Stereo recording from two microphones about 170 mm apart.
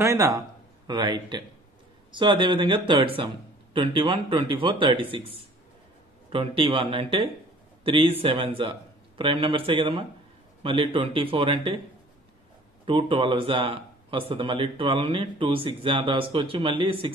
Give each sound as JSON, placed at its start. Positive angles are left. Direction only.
{"t": 0.0, "sound": "a man's voice", "side_deg": -20}
{"t": 12.8, "sound": "speech", "side_deg": -30}